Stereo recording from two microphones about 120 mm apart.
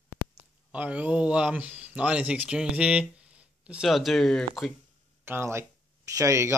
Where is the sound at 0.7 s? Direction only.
10° right (ahead or behind); by 4.5 s 5° left (ahead or behind).